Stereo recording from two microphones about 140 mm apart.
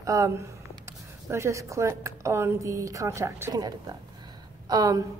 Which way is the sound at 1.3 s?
20° right (ahead or behind).